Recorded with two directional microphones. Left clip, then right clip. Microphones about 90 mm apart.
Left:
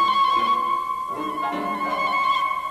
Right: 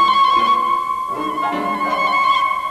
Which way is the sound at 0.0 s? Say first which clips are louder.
Right 6 dB; 35° left (ahead or behind).